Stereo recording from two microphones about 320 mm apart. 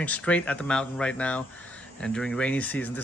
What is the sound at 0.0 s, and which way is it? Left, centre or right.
Speech, centre.